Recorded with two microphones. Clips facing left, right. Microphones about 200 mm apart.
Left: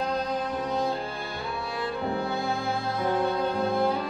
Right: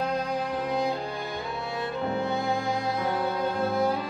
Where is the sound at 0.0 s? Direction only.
10° right (ahead or behind).